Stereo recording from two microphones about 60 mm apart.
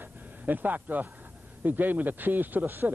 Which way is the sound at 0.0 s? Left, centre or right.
Right.